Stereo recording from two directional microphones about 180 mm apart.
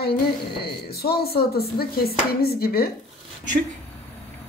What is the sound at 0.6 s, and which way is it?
Speech, 60° left (ahead or behind).